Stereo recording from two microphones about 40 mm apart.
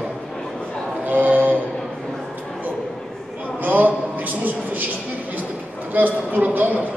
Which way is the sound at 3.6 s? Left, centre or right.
Right.